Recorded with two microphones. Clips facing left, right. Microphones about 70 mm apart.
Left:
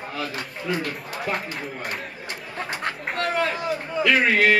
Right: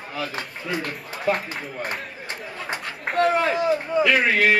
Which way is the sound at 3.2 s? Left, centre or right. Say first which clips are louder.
Right 5 dB; centre.